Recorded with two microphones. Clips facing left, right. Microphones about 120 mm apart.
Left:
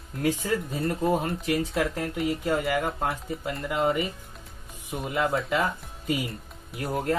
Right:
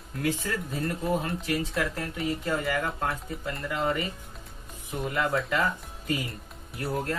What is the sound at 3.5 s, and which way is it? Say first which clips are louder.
Speech: left 2 dB; centre (ahead or behind).